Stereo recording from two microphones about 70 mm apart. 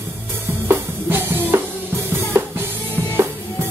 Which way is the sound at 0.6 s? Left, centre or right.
Right.